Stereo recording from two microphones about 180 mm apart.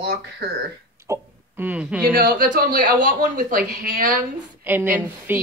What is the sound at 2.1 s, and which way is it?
Speech, 55° right (ahead or behind).